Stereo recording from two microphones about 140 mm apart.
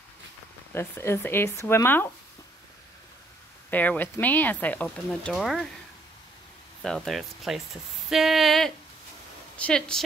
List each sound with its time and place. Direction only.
0.7 s speech: 20° left (ahead or behind)
3.7 s speech: 10° left (ahead or behind)
6.8 s speech: 5° left (ahead or behind)